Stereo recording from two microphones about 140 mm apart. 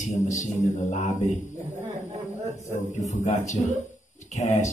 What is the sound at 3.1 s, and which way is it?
Speech, 60° left (ahead or behind).